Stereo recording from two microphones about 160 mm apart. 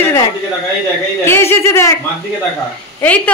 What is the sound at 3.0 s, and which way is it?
Speech, 10° left (ahead or behind).